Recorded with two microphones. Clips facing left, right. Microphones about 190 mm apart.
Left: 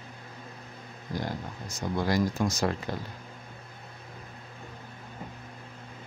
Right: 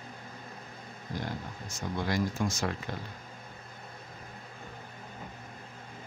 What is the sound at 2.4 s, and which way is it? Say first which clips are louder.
Speech: left 4 dB; 40° left (ahead or behind).